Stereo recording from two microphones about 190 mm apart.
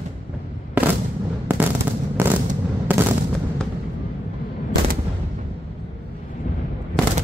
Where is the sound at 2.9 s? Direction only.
10° right (ahead or behind).